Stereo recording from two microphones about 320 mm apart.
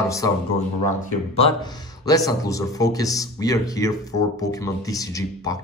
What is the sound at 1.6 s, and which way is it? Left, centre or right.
A man's voice, centre.